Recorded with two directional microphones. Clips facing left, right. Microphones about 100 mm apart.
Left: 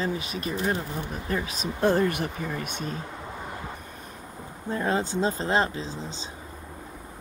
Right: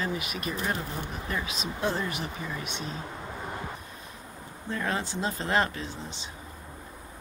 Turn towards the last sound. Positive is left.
turn(degrees=30)  # may be behind; listen again after turning